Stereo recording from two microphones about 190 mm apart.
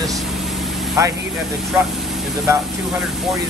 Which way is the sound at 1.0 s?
15° right (ahead or behind).